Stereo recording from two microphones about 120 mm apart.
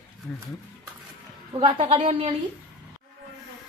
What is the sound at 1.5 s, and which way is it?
Speech, 50° right (ahead or behind).